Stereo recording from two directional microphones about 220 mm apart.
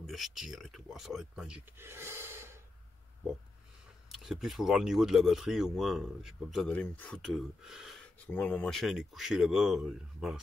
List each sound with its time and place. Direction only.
0.0 s speech: centre (ahead or behind)
4.1 s speech: centre (ahead or behind)